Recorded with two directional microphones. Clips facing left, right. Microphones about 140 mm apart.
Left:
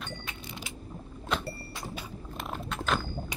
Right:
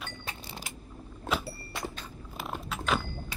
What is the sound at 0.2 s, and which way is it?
Vehicle, 40° right (ahead or behind).